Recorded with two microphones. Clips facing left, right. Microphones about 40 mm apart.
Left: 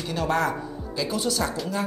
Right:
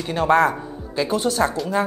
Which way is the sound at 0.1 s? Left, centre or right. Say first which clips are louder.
Right 7 dB; right.